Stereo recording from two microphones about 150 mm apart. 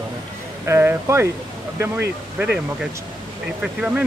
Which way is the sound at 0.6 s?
15° right (ahead or behind).